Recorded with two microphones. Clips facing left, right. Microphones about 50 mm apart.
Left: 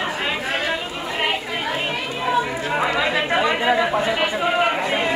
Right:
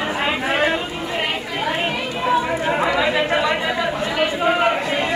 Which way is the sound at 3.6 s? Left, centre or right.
Left.